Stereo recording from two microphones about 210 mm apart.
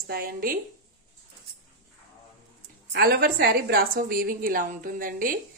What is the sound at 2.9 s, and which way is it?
A woman's voice, 50° right (ahead or behind).